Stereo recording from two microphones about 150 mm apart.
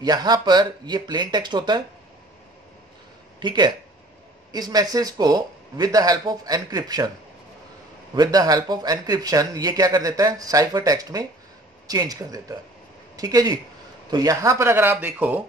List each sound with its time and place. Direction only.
0.0 s speech: 30° right (ahead or behind)
3.3 s speech: 30° right (ahead or behind)
8.1 s speech: 25° right (ahead or behind)